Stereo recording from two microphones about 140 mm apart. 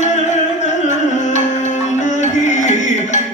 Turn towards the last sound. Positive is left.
turn(degrees=60)  # may be behind; listen again after turning